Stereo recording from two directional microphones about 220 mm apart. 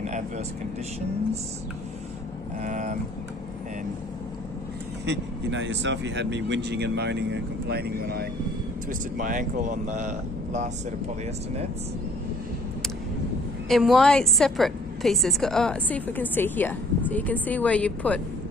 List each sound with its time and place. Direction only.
2.6 s vehicle: 35° right (ahead or behind)
5.0 s speech: 55° right (ahead or behind); by 10.7 s 35° right (ahead or behind)
13.7 s a woman's voice: centre (ahead or behind)